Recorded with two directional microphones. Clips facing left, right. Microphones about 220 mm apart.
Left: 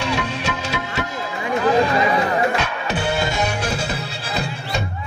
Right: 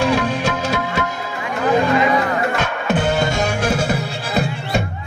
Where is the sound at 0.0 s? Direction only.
50° right (ahead or behind).